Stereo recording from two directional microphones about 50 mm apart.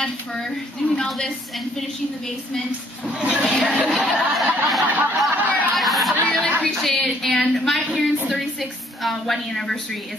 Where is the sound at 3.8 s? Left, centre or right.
Centre.